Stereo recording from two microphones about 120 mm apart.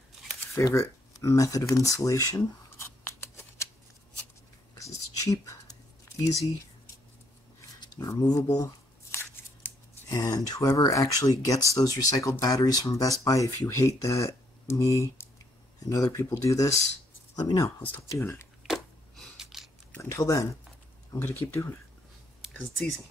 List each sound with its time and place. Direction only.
0.6 s a sound: 25° left (ahead or behind)
4.7 s whispering: 25° left (ahead or behind)
7.8 s speech: 30° left (ahead or behind)
17.8 s speech: 15° left (ahead or behind)
18.6 s a sound: centre (ahead or behind)
20.0 s speech: 30° left (ahead or behind)
22.5 s speech: 5° left (ahead or behind)